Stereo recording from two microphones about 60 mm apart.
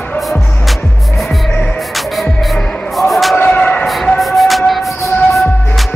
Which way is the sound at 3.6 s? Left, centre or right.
Left.